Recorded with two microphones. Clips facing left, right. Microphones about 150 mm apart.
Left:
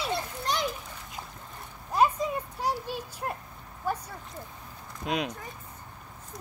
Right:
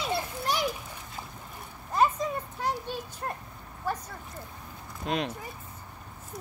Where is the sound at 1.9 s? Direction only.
10° left (ahead or behind).